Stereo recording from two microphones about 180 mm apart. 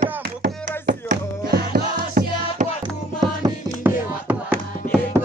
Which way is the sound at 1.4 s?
60° right (ahead or behind).